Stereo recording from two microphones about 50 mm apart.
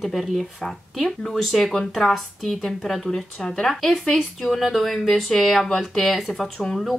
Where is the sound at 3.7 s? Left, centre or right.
Centre.